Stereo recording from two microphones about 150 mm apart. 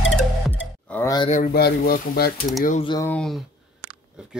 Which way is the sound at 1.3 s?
75° left (ahead or behind).